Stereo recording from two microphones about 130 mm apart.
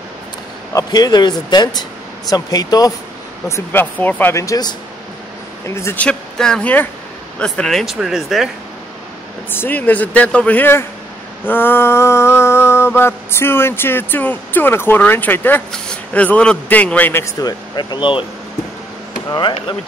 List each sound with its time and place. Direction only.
0.7 s speech: 30° left (ahead or behind)
5.8 s speech: 20° left (ahead or behind)
6.0 s mantra: 5° left (ahead or behind)
7.3 s speech: 5° left (ahead or behind)
9.5 s mantra: 15° left (ahead or behind)
17.4 s speech: 30° left (ahead or behind)
19.2 s speech: 35° left (ahead or behind)